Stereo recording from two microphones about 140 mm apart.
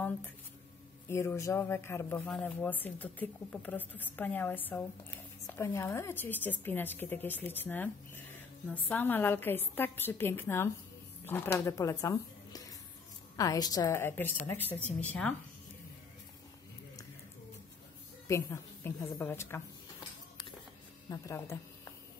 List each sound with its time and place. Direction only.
1.0 s a woman's voice: 20° left (ahead or behind)
18.3 s a woman's voice: 20° left (ahead or behind)
21.1 s a woman's voice: 20° left (ahead or behind)